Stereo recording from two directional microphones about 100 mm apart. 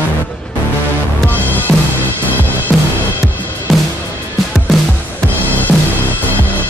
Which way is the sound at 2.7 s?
Centre (ahead or behind).